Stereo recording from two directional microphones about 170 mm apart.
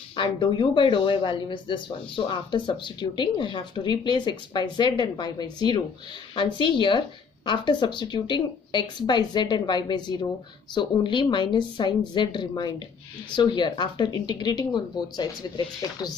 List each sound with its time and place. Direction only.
0.1 s speech: 30° left (ahead or behind)